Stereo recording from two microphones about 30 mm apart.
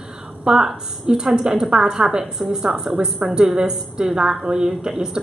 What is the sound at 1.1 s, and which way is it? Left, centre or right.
Speech, right.